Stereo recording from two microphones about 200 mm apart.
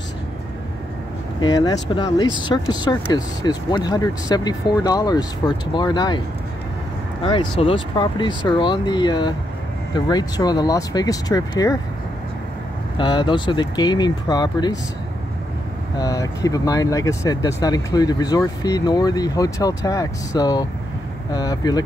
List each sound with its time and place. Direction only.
1.4 s speech: 20° left (ahead or behind)
12.9 s speech: 25° left (ahead or behind)
16.0 s speech: 15° left (ahead or behind)